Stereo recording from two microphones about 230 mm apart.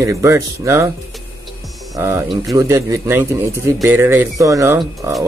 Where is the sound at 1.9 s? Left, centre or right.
Centre.